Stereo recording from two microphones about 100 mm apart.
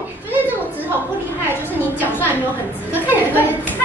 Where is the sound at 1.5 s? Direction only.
20° left (ahead or behind).